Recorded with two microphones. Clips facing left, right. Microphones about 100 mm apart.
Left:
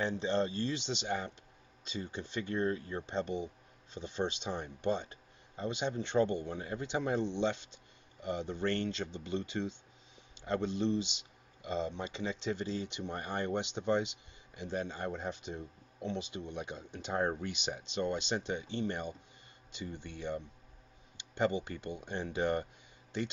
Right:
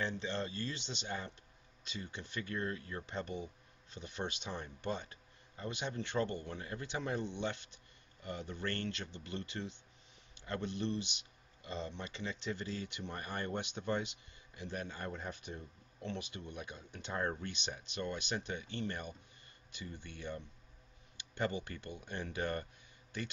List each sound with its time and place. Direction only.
0.0 s speech: 20° left (ahead or behind)